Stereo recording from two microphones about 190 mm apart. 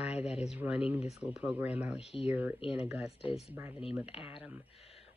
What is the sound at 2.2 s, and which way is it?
Speech, 10° right (ahead or behind).